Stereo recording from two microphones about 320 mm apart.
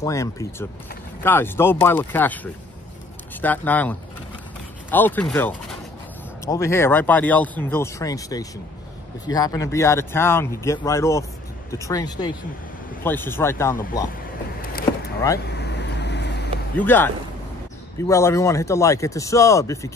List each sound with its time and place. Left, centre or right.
0.0 s speech: centre
4.9 s speech: centre
15.4 s vehicle: left
16.7 s speech: centre